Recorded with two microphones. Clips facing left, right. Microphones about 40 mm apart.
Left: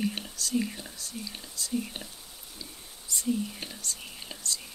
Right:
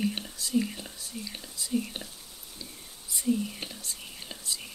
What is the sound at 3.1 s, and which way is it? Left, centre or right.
Whispering, centre.